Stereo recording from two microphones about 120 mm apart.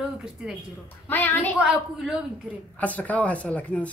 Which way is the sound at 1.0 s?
15° left (ahead or behind).